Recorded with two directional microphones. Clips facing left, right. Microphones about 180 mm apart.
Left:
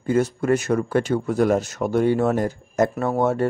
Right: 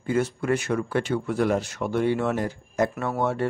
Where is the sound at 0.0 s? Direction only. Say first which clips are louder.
Left 4 dB; 40° left (ahead or behind).